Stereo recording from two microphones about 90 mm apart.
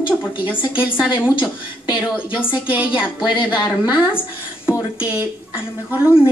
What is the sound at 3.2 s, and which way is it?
Speech, 60° left (ahead or behind).